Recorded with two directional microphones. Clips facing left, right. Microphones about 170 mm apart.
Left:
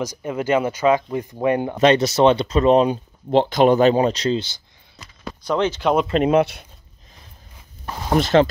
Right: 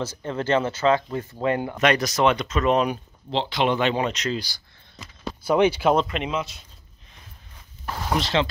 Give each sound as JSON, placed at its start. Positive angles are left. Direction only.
{"t": 0.0, "sound": "speech", "side_deg": 10}
{"t": 3.3, "sound": "speech", "side_deg": 50}
{"t": 5.4, "sound": "speech", "side_deg": -10}
{"t": 6.2, "sound": "speech", "side_deg": 60}
{"t": 8.2, "sound": "speech", "side_deg": 50}